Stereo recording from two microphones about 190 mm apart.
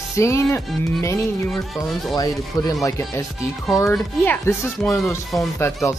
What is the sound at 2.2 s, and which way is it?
Speech, 20° left (ahead or behind).